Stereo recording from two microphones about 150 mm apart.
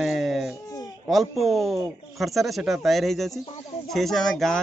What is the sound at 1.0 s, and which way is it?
Speech, centre (ahead or behind).